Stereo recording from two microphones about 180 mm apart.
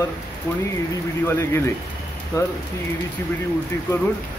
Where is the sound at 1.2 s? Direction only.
15° left (ahead or behind).